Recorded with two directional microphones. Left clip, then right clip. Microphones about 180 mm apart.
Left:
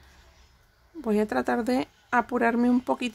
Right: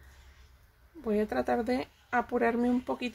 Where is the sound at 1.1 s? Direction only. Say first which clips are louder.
Left 4 dB; 25° left (ahead or behind).